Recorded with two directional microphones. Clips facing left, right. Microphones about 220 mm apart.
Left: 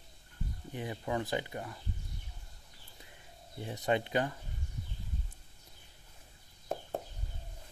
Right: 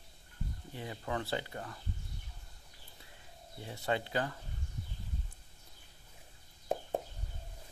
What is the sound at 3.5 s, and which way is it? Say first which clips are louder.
Speech: left 3 dB; 20° left (ahead or behind).